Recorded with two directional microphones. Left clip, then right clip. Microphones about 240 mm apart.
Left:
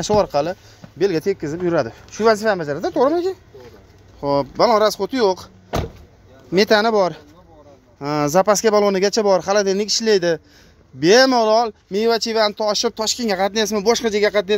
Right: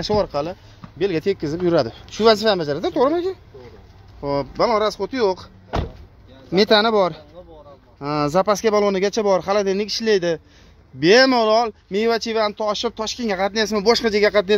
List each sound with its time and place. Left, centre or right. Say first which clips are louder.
0.0 s speech: left 4 dB; centre
1.2 s speech: even; centre
6.5 s speech: left 1 dB; centre